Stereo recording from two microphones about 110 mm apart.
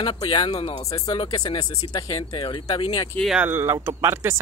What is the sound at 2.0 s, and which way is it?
Speech, 35° left (ahead or behind).